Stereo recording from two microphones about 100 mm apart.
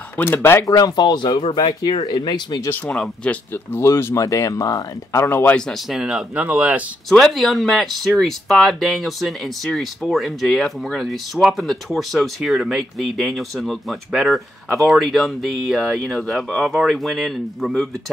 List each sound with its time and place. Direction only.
0.2 s speech: 20° left (ahead or behind)
0.7 s speech: 45° left (ahead or behind)
2.7 s speech: 20° left (ahead or behind)
5.7 s speech: 5° right (ahead or behind)
7.1 s speech: 5° left (ahead or behind)